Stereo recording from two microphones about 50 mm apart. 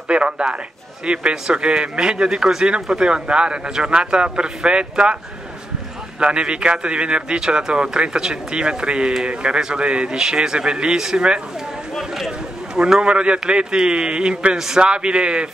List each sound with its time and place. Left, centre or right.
0.1 s a man's voice: right
6.1 s a man's voice: centre